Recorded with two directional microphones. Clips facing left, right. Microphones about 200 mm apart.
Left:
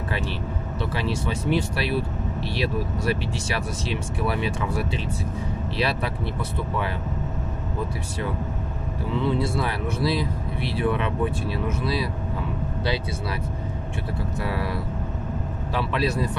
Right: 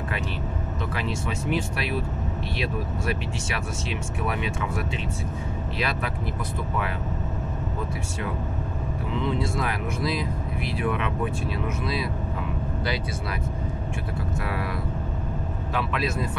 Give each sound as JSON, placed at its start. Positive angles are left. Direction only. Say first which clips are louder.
{"t": 0.9, "sound": "speech", "louder": "left 3 dB", "side_deg": 35}
{"t": 9.2, "sound": "speech", "louder": "left 3 dB", "side_deg": 35}
{"t": 15.7, "sound": "speech", "louder": "left 3 dB", "side_deg": 35}